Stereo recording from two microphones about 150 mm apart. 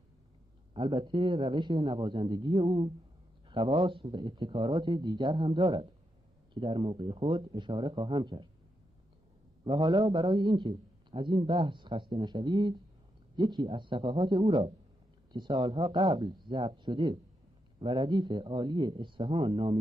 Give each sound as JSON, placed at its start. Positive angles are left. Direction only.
{"t": 0.7, "sound": "a man's voice", "side_deg": -30}
{"t": 9.7, "sound": "a man's voice", "side_deg": -30}